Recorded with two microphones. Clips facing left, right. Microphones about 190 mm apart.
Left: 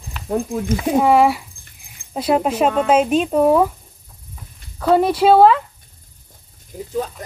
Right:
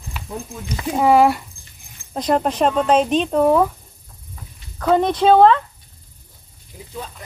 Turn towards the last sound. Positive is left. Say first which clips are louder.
# left 9 dB
turn(degrees=50)  # may be behind; listen again after turning